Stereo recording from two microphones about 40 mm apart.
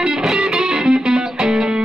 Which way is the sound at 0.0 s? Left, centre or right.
Centre.